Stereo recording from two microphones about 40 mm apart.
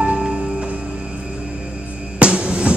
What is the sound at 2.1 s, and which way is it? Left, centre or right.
Music, right.